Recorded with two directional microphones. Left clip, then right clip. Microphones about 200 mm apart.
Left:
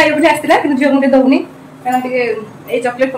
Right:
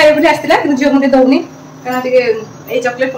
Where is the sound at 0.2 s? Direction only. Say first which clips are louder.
Even; 15° left (ahead or behind).